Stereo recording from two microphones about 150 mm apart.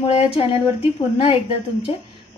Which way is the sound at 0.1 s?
40° left (ahead or behind).